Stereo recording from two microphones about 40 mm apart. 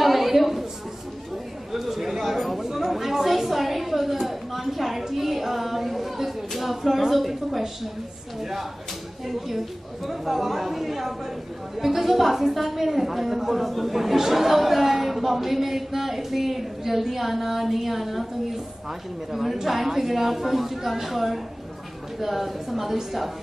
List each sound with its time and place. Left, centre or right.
0.0 s a sound: centre
1.7 s chatter: centre
8.4 s speech: centre
10.0 s a woman's voice: centre
19.3 s a woman's voice: centre